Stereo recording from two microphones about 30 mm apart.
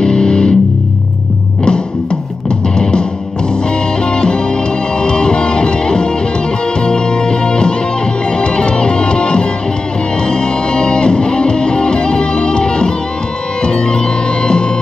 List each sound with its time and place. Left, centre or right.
0.0 s music: left
2.7 s music: left
4.1 s music: left